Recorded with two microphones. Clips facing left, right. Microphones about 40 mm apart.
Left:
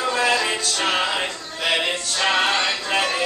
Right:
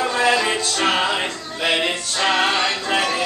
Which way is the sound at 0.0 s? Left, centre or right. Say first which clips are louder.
Right 2 dB; centre.